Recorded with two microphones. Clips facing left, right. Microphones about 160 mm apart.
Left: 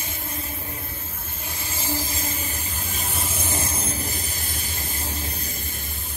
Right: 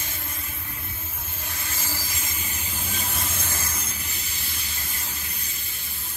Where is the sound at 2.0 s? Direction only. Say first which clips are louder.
Left 6 dB; 35° left (ahead or behind).